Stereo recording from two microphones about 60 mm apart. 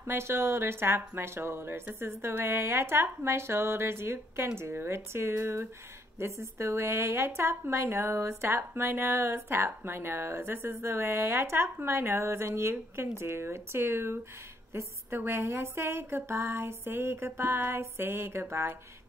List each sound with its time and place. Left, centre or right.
0.0 s a woman's voice: right